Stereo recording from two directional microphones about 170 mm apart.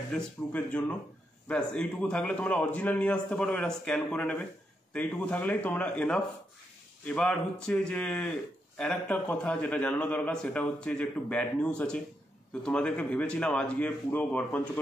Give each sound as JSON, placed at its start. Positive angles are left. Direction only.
{"t": 0.1, "sound": "a man's voice", "side_deg": 5}